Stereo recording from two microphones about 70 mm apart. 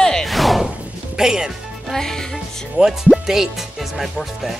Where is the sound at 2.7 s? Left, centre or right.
Centre.